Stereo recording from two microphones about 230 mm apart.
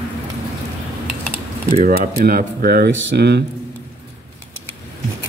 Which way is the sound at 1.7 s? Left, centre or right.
Right.